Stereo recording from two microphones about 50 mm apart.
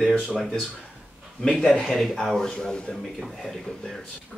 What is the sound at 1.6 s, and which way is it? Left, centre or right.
A woman's voice, centre.